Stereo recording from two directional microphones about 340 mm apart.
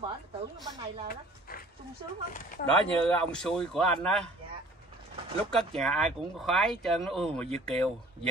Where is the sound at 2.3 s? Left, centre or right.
Left.